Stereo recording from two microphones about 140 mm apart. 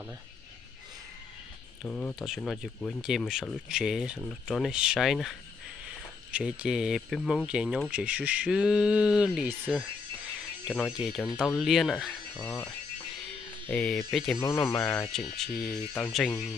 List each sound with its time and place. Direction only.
1.9 s speech: 10° left (ahead or behind)
2.1 s speech: centre (ahead or behind)
6.3 s speech: 5° right (ahead or behind)
10.9 s speech: 5° right (ahead or behind)
12.4 s speech: 20° left (ahead or behind)
13.7 s speech: 5° left (ahead or behind)
14.3 s speech: 15° left (ahead or behind)